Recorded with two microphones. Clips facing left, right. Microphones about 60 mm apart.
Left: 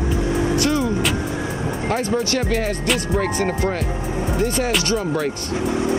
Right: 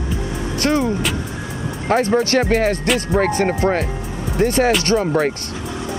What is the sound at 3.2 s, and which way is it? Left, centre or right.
Speech, right.